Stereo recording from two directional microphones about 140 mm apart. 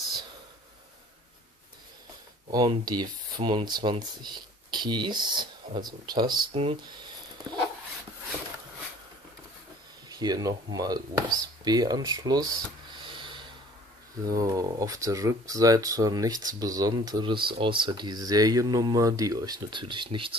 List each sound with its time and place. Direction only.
2.5 s speech: 30° right (ahead or behind)
6.5 s a sound: 45° right (ahead or behind)
10.0 s speech: 30° right (ahead or behind)